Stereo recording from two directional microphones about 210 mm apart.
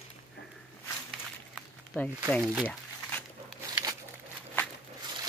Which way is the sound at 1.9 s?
10° left (ahead or behind).